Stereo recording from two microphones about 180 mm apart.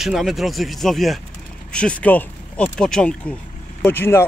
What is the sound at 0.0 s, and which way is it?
Speech, centre (ahead or behind).